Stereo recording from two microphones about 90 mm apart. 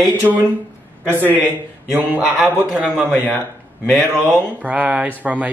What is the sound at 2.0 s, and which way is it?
Speech, 15° right (ahead or behind).